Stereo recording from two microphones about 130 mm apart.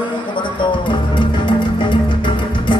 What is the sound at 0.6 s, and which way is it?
Music, 40° left (ahead or behind).